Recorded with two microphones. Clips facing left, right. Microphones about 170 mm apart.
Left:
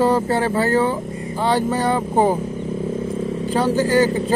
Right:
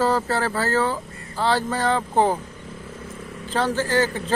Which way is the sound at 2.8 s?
30° left (ahead or behind).